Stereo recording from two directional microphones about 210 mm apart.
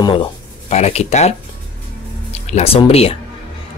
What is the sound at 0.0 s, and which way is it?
Speech, 25° left (ahead or behind).